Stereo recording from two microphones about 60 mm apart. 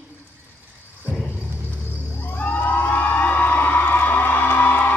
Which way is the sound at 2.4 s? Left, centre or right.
Left.